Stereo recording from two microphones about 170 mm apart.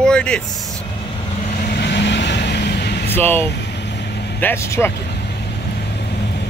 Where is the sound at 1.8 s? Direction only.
80° left.